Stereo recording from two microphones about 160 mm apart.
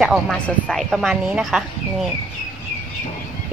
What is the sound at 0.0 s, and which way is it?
Speech, centre (ahead or behind).